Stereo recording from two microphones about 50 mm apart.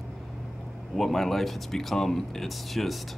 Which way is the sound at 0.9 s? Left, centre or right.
Centre.